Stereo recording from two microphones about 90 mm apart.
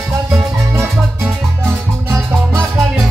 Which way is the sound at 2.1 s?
35° right (ahead or behind).